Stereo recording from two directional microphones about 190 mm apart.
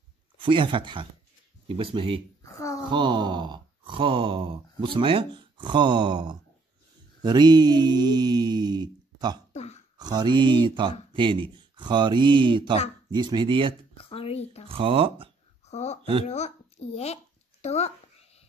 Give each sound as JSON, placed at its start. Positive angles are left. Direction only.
{"t": 0.4, "sound": "speech", "side_deg": -25}
{"t": 2.4, "sound": "a sound", "side_deg": 15}
{"t": 2.9, "sound": "speech", "side_deg": -25}
{"t": 9.5, "sound": "throat clearing", "side_deg": 35}
{"t": 9.9, "sound": "speech", "side_deg": -20}
{"t": 13.9, "sound": "speech", "side_deg": 30}
{"t": 14.7, "sound": "speech", "side_deg": -30}
{"t": 15.6, "sound": "speech", "side_deg": 35}
{"t": 16.0, "sound": "speech", "side_deg": -30}
{"t": 16.3, "sound": "a sound", "side_deg": 35}